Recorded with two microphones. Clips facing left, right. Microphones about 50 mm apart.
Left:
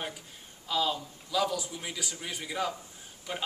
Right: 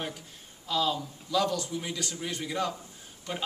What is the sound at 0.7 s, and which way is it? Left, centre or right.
A man's voice, centre.